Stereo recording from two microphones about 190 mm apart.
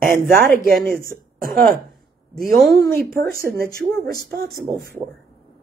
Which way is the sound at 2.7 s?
55° right (ahead or behind).